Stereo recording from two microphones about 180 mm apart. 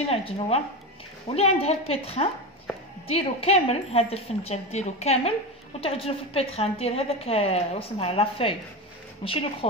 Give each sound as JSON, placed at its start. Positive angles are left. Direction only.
{"t": 0.1, "sound": "a woman's voice", "side_deg": 35}